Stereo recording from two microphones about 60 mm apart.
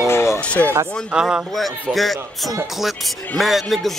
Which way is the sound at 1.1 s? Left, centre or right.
Centre.